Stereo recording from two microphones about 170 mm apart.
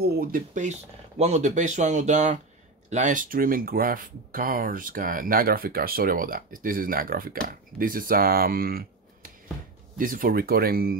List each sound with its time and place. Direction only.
0.0 s speech: 60° right (ahead or behind)
0.7 s speech: 40° right (ahead or behind); by 11.0 s 60° right (ahead or behind)